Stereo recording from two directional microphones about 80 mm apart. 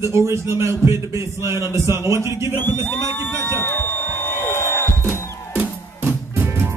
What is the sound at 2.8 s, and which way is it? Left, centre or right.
Speech, left.